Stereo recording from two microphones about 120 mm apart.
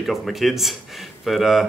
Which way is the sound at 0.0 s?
Centre (ahead or behind).